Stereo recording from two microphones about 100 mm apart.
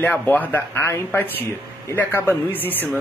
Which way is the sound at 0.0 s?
15° left (ahead or behind).